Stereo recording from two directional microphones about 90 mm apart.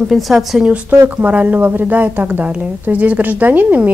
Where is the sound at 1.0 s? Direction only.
15° right (ahead or behind).